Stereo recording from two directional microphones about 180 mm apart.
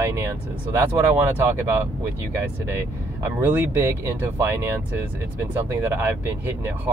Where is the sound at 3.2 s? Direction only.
10° right (ahead or behind).